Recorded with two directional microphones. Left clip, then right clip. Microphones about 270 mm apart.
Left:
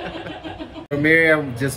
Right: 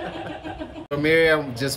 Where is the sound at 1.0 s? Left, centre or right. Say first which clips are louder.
Left 3 dB; centre.